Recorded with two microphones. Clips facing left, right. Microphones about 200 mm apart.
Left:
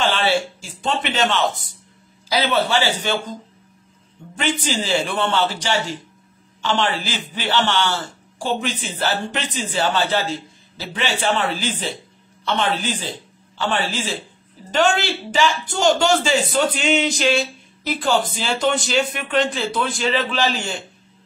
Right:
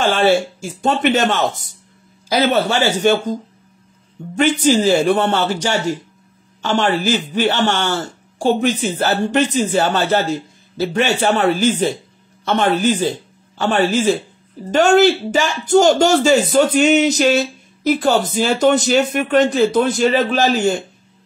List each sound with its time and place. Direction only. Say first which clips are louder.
0.0 s speech: right 5 dB; 45° right (ahead or behind)
4.4 s speech: right 9 dB; 45° right (ahead or behind)